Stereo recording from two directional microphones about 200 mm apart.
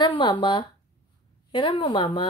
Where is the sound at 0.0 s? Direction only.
20° left (ahead or behind).